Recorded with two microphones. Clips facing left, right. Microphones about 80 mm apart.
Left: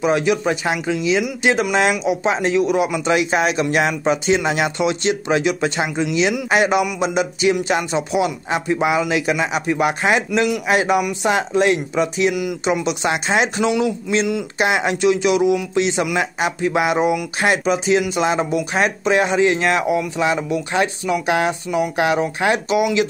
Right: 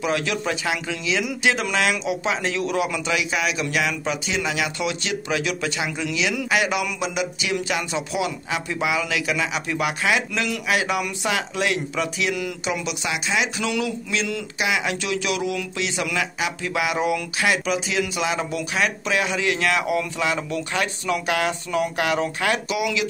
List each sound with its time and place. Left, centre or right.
0.0 s a man's voice: left
3.1 s a man's voice: left; by 12.5 s centre
12.6 s speech: left
13.1 s speech: left
13.6 s a man's voice: left
14.6 s speech: left
14.9 s a man's voice: left